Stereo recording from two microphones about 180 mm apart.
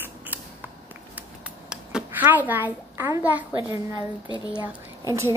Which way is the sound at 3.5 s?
25° right (ahead or behind).